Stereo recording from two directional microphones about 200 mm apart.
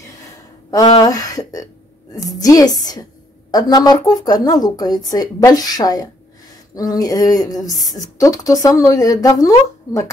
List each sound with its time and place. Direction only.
0.9 s speech: 15° left (ahead or behind)